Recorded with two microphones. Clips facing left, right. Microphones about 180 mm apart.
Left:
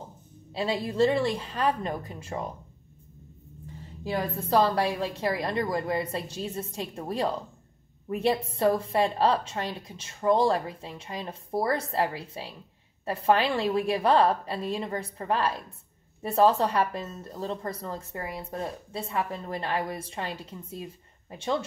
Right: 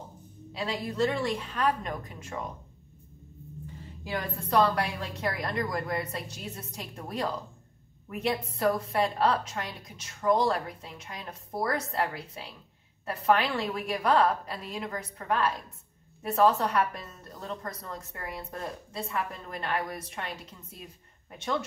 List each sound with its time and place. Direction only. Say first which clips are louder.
0.5 s a woman's voice: left 4 dB; 30° left (ahead or behind)
4.0 s a woman's voice: left 4 dB; 30° left (ahead or behind)